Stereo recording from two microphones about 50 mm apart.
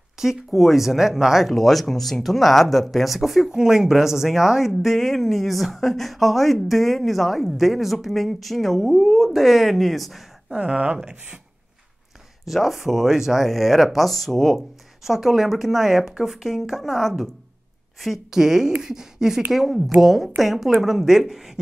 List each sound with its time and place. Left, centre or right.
0.2 s speech: centre
10.5 s speech: right
12.4 s speech: centre
15.0 s a woman's voice: centre